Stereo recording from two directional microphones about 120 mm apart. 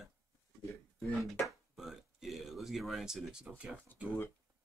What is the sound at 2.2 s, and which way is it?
Speech, 5° right (ahead or behind).